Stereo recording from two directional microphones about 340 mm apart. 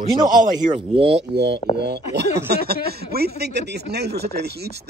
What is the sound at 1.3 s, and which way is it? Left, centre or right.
Speech, right.